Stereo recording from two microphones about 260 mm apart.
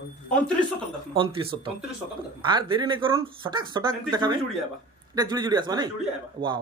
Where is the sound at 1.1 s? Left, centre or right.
Centre.